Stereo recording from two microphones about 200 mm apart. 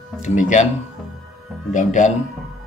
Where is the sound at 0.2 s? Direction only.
35° left (ahead or behind).